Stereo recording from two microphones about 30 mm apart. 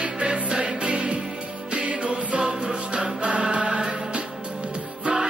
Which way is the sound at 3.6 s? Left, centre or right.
Right.